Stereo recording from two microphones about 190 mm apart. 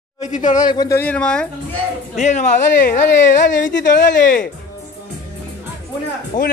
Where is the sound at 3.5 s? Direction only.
70° left (ahead or behind).